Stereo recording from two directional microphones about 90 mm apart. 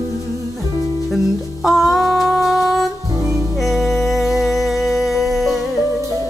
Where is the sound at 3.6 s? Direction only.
Centre (ahead or behind).